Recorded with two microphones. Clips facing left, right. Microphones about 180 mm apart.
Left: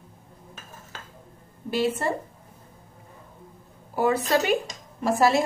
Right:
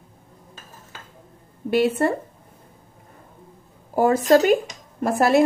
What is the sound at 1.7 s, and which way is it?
Speech, 60° right (ahead or behind).